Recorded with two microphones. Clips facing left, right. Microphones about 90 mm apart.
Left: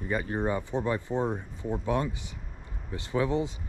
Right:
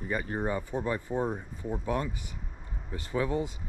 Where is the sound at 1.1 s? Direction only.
90° left.